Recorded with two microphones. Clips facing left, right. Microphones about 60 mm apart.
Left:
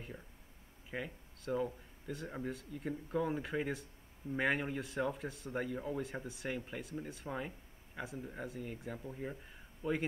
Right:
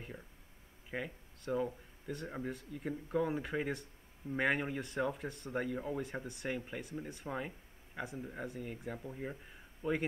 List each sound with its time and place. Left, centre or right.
0.8 s speech: centre
9.8 s a man's voice: right